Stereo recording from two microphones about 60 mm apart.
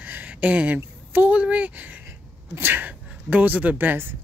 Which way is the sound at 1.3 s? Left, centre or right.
Right.